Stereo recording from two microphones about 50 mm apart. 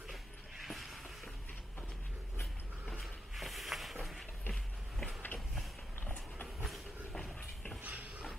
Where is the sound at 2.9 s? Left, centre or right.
Centre.